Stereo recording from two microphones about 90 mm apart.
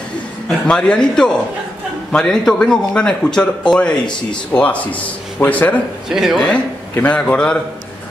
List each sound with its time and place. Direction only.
0.7 s a man's voice: 10° left (ahead or behind)
6.0 s speech: 5° right (ahead or behind)
6.5 s a man's voice: 15° left (ahead or behind)